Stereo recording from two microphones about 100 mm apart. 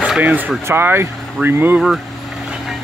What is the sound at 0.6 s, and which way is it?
Speech, 20° right (ahead or behind).